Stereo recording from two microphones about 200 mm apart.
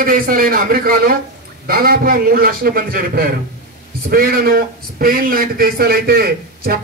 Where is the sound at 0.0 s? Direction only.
45° right (ahead or behind).